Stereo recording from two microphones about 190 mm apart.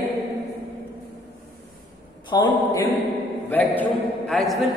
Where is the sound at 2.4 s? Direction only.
15° left (ahead or behind).